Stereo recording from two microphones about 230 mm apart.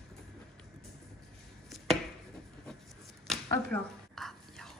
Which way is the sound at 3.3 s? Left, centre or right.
Centre.